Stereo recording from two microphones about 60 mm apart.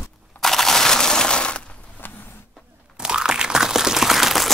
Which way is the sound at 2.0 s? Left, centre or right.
Left.